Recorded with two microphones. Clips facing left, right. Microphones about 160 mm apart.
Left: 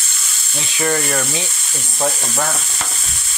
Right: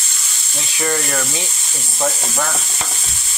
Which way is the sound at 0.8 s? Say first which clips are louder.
Left 2 dB; 5° left (ahead or behind).